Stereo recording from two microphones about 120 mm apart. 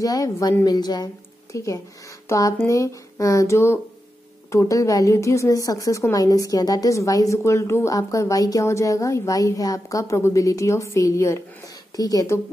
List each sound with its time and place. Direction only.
0.0 s a woman's voice: 30° left (ahead or behind)